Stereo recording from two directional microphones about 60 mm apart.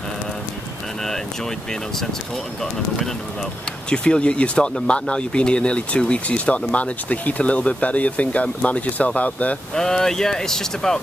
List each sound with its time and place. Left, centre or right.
3.9 s speech: centre
9.8 s speech: centre